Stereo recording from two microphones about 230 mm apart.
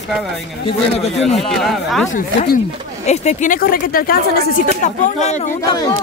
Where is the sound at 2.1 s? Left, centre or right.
Left.